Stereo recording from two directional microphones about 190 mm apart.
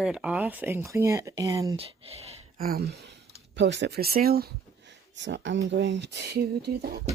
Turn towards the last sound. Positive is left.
turn(degrees=-55)  # may be behind; listen again after turning